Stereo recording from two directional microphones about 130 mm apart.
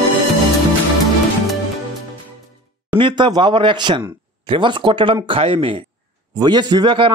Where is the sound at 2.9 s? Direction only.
40° right (ahead or behind).